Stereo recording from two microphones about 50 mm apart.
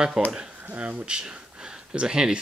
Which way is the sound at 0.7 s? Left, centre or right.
Right.